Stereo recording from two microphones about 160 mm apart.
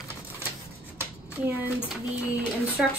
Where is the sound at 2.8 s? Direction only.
Centre (ahead or behind).